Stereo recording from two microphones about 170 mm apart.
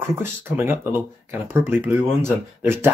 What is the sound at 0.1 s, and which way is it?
Speech, 15° right (ahead or behind).